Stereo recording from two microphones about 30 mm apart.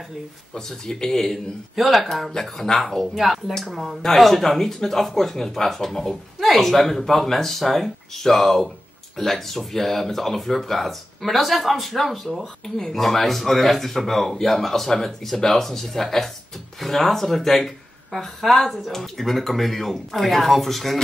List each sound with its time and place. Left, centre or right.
0.6 s speech: centre
1.8 s speech: centre
2.4 s speech: centre
3.2 s speech: centre
4.2 s speech: centre